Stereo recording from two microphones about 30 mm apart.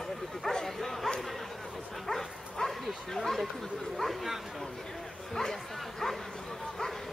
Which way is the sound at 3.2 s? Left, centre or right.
Centre.